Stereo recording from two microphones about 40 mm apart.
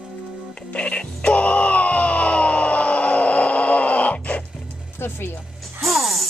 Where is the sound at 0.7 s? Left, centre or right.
Left.